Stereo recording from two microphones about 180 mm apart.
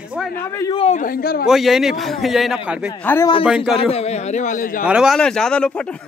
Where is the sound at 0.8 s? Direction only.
45° left (ahead or behind).